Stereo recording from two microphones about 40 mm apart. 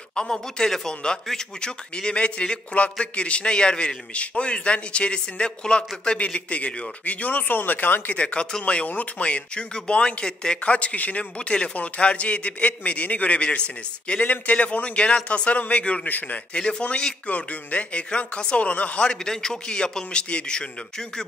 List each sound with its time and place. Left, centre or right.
0.1 s a man's voice: left
8.2 s a man's voice: left
13.4 s a man's voice: left
14.2 s a man's voice: left
16.1 s speech: left
16.5 s a man's voice: left
19.0 s a man's voice: centre